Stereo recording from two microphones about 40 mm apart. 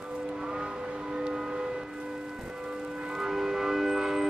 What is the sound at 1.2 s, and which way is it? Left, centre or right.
Civil defense siren, centre.